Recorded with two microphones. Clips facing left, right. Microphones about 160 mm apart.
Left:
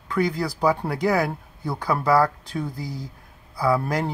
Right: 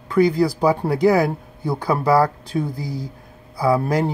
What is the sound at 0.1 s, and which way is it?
Speech, 20° right (ahead or behind).